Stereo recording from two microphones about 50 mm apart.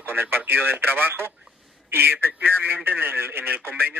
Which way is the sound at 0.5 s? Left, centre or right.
Right.